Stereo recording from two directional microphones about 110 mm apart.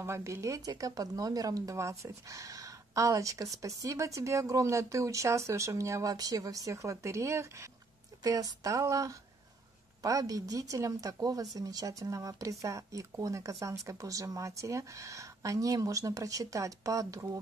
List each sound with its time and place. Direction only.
0.0 s speech: 25° right (ahead or behind)